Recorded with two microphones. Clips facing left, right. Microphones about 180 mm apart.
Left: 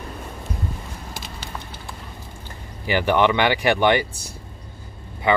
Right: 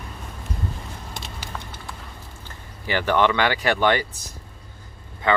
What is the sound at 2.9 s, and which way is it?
Speech, 15° left (ahead or behind).